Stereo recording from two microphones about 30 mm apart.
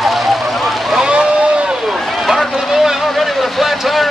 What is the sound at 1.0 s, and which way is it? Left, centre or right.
Boat, right.